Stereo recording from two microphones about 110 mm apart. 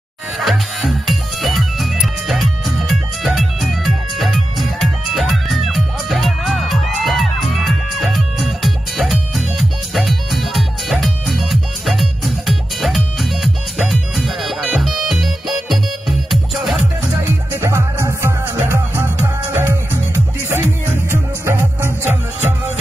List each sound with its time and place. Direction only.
0.4 s music: centre (ahead or behind)
17.2 s music: 20° right (ahead or behind)